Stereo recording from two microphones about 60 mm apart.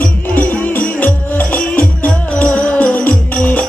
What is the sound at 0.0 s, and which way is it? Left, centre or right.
Music, left.